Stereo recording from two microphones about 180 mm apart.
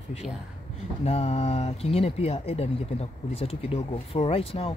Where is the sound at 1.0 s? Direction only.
35° left (ahead or behind).